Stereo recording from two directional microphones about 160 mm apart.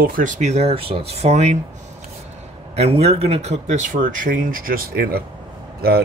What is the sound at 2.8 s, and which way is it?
Speech, 40° right (ahead or behind).